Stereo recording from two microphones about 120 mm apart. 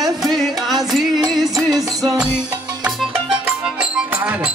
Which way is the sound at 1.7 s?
30° right (ahead or behind).